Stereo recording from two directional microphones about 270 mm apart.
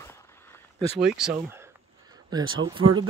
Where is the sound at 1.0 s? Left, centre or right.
Centre.